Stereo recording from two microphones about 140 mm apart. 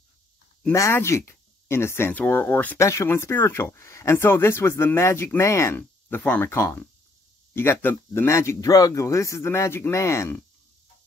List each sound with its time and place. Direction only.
0.7 s speech: 20° left (ahead or behind)